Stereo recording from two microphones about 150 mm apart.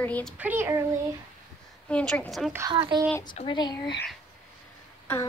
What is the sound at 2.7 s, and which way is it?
Speech, 30° right (ahead or behind).